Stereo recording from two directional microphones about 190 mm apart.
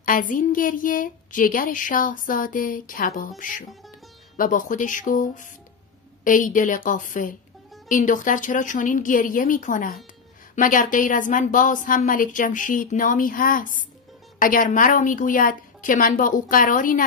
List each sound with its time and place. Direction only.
0.0 s a woman's voice: 45° left (ahead or behind)
4.4 s a woman's voice: 45° left (ahead or behind)